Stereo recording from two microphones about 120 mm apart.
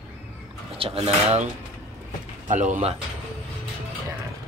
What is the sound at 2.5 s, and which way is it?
Speech, 90° right.